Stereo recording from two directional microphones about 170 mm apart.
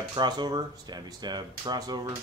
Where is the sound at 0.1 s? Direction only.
25° right (ahead or behind).